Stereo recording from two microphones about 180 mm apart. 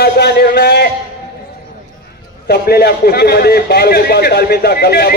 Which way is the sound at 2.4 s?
65° left (ahead or behind).